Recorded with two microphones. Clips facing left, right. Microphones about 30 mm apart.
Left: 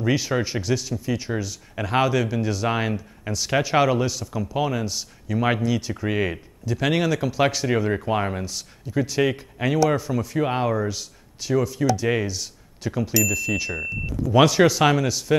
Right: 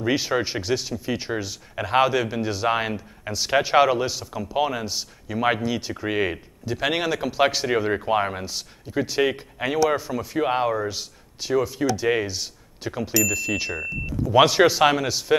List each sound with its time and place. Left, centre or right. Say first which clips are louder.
0.0 s speech: even; centre
1.8 s speech: right 1 dB; centre
13.7 s speech: even; centre
14.8 s speech: even; centre